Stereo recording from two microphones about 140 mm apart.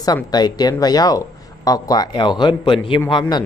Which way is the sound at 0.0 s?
30° left (ahead or behind).